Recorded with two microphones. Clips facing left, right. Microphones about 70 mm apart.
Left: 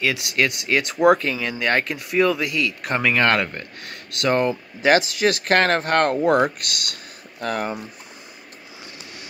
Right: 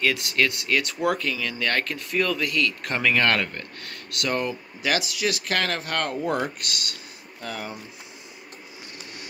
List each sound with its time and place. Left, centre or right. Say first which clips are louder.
0.0 s speech: left 1 dB; centre; by 7.8 s left